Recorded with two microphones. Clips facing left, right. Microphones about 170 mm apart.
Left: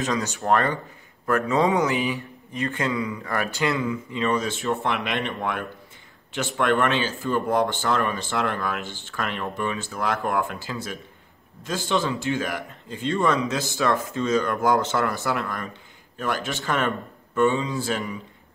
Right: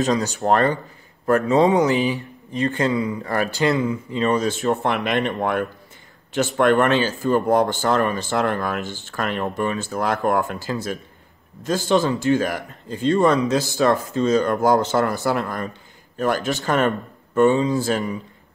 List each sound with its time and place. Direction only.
0.0 s speech: 35° right (ahead or behind)